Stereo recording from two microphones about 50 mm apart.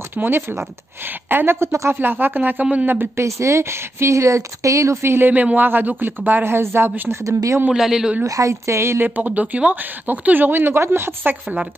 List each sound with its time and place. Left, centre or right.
0.1 s speech: right
2.6 s speech: right
3.2 s speech: right
5.3 s speech: right
7.2 s speech: right
7.7 s speech: centre
8.2 s a woman's voice: right
9.0 s speech: right